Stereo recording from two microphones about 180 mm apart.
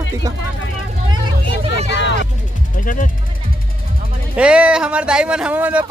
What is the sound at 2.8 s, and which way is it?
Speech, 50° left (ahead or behind).